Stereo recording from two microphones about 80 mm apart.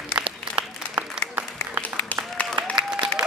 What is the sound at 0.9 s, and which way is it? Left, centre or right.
Applause, right.